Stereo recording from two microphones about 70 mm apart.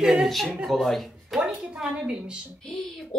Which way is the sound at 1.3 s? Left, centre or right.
Centre.